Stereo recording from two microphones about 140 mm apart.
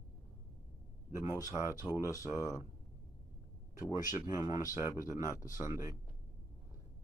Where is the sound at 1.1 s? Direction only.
20° right (ahead or behind).